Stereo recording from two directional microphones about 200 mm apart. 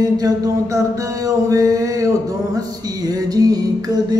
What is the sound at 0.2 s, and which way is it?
Mantra, 15° right (ahead or behind).